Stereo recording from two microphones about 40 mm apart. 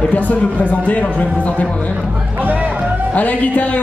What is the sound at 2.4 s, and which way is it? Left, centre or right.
Music, right.